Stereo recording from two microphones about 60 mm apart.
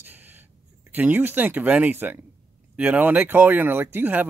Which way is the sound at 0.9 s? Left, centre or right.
Right.